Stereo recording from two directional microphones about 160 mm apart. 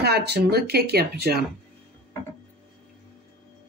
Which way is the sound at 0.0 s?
90° right.